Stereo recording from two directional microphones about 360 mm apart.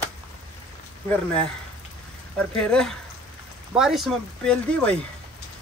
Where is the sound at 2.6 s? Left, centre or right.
Centre.